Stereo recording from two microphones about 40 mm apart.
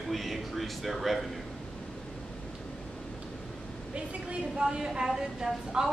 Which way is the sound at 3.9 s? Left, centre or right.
Right.